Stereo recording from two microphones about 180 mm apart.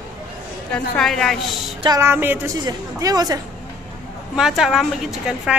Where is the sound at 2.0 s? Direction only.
10° right (ahead or behind).